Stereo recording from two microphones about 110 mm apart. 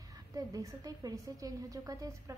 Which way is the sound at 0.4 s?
35° right (ahead or behind).